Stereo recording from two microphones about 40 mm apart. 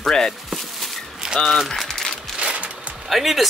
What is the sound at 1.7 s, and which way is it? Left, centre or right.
Crumpling, centre.